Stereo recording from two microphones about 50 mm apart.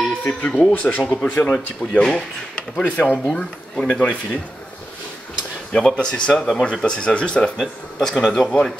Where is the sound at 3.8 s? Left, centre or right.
Left.